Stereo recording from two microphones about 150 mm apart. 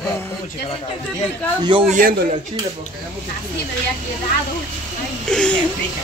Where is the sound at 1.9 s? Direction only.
65° right (ahead or behind).